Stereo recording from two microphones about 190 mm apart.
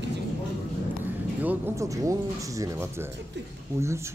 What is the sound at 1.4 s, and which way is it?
Speech, 10° right (ahead or behind).